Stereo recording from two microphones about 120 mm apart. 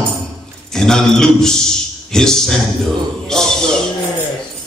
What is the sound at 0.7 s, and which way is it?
Speech, 5° left (ahead or behind).